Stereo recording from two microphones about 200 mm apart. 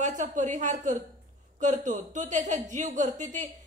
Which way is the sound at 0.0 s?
40° right (ahead or behind).